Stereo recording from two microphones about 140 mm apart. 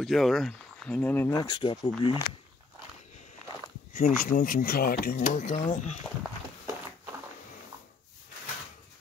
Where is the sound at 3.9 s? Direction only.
80° left.